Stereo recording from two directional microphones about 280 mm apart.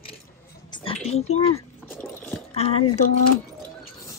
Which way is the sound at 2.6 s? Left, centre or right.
Left.